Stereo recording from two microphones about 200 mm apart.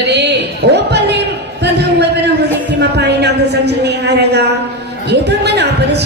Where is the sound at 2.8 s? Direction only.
55° right (ahead or behind).